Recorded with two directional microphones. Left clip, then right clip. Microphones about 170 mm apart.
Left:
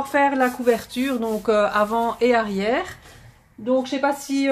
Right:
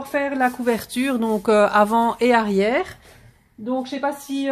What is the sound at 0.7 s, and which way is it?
Speech, 60° right (ahead or behind).